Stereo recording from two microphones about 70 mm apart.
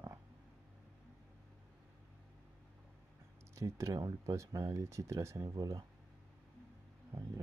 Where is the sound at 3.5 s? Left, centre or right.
Right.